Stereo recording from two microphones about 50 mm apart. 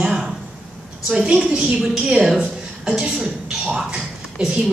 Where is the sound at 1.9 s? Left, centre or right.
Centre.